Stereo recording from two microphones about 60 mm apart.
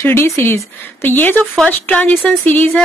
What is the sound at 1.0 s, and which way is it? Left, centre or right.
A woman's voice, left.